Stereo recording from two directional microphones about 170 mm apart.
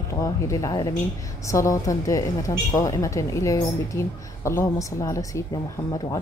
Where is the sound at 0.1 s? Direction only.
20° left (ahead or behind).